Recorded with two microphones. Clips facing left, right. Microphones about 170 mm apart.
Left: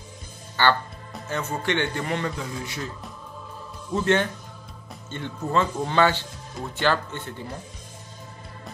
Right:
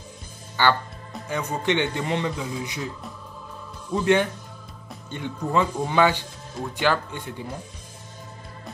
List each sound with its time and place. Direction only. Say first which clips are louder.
0.6 s a man's voice: even; 15° right (ahead or behind)
3.9 s a man's voice: right 2 dB; 15° right (ahead or behind)